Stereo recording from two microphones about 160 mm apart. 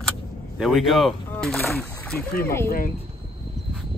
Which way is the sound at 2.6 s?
65° left (ahead or behind).